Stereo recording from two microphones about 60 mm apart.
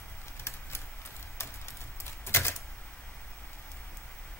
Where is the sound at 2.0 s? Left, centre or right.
Left.